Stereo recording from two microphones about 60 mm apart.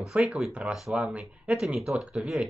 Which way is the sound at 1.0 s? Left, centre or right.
Right.